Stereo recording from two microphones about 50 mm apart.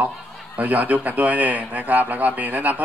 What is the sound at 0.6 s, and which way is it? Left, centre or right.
A man's voice, right.